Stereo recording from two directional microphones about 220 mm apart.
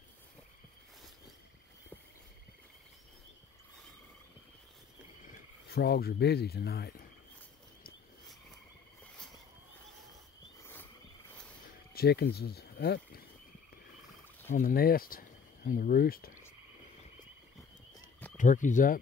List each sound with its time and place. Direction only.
5.2 s speech: 45° left (ahead or behind)
10.7 s wild animals: 10° left (ahead or behind)
11.9 s speech: 45° left (ahead or behind)
14.5 s speech: 40° left (ahead or behind)
18.4 s speech: 35° left (ahead or behind)